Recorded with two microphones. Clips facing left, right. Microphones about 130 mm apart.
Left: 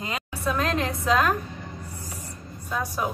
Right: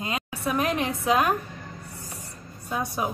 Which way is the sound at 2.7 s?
15° right (ahead or behind).